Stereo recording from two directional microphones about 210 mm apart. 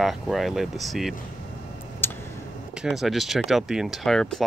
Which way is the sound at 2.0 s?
10° left (ahead or behind).